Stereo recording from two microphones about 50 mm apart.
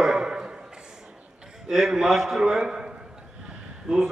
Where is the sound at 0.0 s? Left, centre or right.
Centre.